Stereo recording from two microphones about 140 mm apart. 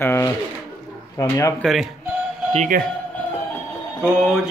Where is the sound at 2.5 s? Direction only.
65° right (ahead or behind).